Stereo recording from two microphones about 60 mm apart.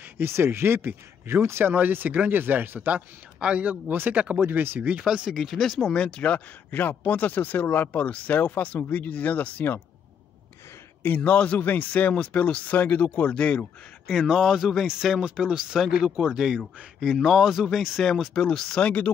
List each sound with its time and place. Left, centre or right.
0.2 s speech: right
3.3 s speech: right
5.3 s speech: centre
5.9 s speech: centre
11.0 s speech: left
14.0 s speech: centre; by 19.1 s left